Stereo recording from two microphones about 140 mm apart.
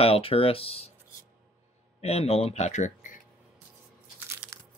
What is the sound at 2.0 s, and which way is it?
Speech, 50° left (ahead or behind).